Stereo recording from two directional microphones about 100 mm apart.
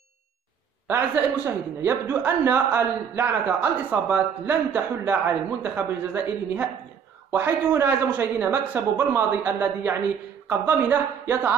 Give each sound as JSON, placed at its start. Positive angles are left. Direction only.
{"t": 0.8, "sound": "a man's voice", "side_deg": -25}